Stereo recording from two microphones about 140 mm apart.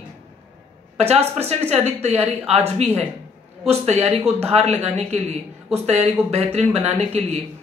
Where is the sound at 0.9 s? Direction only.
45° right (ahead or behind).